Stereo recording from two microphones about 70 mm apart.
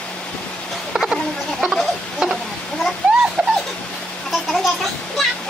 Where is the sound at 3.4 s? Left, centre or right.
Centre.